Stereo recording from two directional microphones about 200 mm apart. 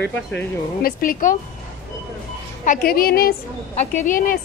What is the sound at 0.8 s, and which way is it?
Speech, 45° left (ahead or behind).